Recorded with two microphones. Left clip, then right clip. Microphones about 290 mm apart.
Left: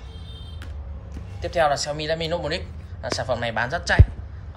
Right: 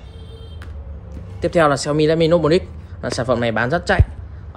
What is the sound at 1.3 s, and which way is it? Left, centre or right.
A man's voice, right.